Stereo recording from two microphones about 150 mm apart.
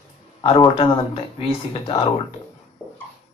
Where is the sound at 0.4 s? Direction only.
35° left (ahead or behind).